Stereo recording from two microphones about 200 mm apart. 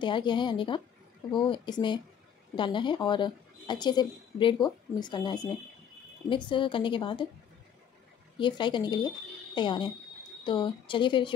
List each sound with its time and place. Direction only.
0.0 s speech: 25° left (ahead or behind)
8.4 s speech: 25° left (ahead or behind)